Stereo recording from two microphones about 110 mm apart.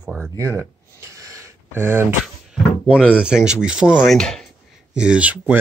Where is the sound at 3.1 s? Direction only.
10° right (ahead or behind).